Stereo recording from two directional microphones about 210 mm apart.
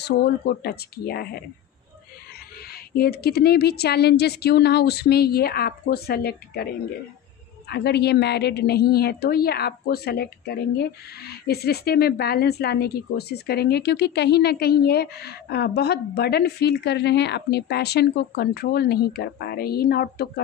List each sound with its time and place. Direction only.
0.0 s a woman's voice: 50° left (ahead or behind)
2.7 s a woman's voice: 45° left (ahead or behind)